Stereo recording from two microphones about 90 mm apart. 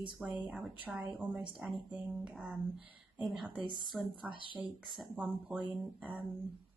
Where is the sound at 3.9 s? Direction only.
15° right (ahead or behind).